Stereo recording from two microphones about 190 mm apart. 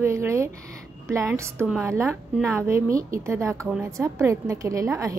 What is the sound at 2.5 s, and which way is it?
A woman's voice, 15° right (ahead or behind).